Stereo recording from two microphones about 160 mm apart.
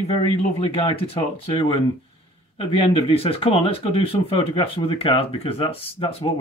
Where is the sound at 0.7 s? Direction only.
35° left (ahead or behind).